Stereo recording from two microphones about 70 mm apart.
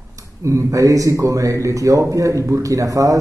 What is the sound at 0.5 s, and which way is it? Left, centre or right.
A man's voice, right.